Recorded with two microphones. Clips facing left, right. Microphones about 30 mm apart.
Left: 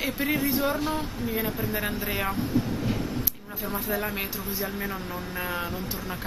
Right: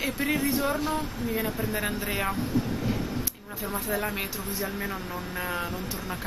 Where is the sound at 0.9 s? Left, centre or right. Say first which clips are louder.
Even; centre.